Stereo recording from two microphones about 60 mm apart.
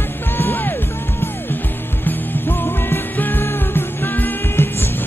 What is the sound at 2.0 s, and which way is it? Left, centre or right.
Music, left.